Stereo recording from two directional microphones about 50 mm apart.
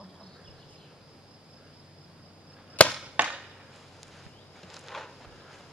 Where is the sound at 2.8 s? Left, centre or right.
Left.